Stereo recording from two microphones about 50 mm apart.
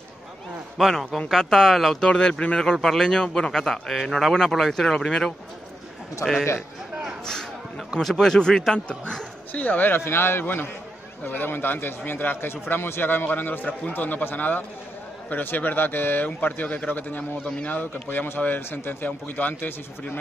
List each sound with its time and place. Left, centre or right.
0.7 s speech: centre
2.0 s a man's voice: centre
4.9 s a man's voice: centre
6.2 s a man's voice: left
8.0 s a man's voice: centre; by 9.2 s left
9.5 s a man's voice: left
9.9 s a man's voice: left